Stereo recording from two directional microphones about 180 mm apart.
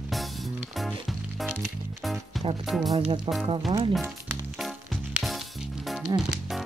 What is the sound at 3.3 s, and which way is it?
Speech, 30° right (ahead or behind).